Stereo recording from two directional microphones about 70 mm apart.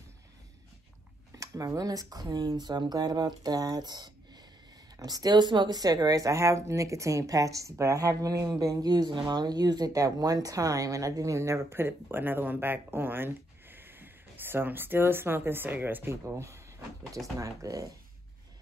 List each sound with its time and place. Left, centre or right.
1.3 s speech: right
4.9 s speech: right
8.8 s speech: right
9.9 s speech: right
16.3 s speech: right